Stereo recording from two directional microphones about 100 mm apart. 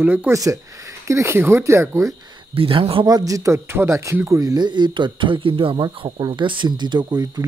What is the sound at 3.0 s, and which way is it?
Speech, 40° right (ahead or behind).